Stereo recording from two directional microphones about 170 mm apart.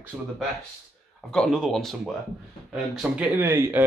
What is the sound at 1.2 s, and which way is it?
Speech, 5° left (ahead or behind).